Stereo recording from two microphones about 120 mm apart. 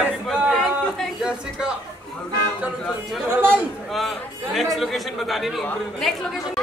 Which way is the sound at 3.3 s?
15° right (ahead or behind).